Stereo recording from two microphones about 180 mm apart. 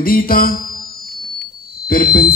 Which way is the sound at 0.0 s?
55° left (ahead or behind).